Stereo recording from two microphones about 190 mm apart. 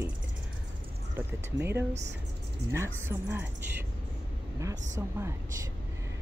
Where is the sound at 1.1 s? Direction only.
15° right (ahead or behind).